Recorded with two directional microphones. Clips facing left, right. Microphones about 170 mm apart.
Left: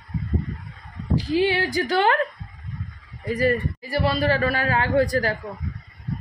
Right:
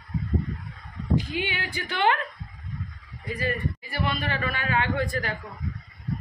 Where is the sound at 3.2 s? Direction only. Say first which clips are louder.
Left 7 dB; 40° left (ahead or behind).